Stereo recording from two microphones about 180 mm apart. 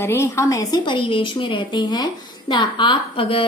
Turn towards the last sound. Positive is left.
turn(degrees=30)  # may be behind; listen again after turning